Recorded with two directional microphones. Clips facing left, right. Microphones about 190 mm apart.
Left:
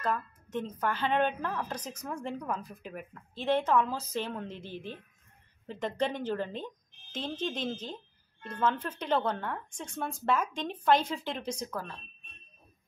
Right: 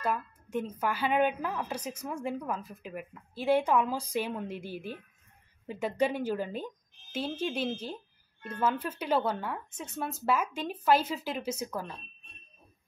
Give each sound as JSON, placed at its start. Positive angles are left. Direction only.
{"t": 0.0, "sound": "a woman's voice", "side_deg": -10}